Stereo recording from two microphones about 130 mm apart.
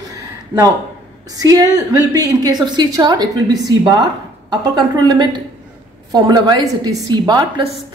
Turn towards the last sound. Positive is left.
turn(degrees=-35)  # may be behind; listen again after turning